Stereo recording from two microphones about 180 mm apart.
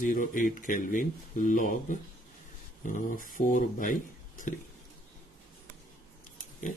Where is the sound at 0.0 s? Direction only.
50° left (ahead or behind).